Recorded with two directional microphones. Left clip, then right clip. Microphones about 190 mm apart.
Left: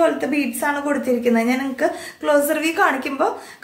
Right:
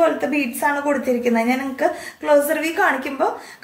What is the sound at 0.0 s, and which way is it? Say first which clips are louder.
A woman's voice: even; 15° left (ahead or behind).